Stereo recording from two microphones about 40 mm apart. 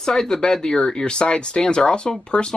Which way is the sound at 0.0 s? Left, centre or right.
Centre.